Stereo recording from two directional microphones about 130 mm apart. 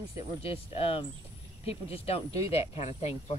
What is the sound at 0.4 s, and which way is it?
Speech, 50° left (ahead or behind).